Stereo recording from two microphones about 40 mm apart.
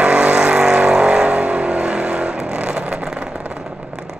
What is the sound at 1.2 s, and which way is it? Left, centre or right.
Vehicle, right.